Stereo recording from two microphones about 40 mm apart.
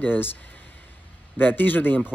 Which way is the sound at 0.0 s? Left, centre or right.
Left.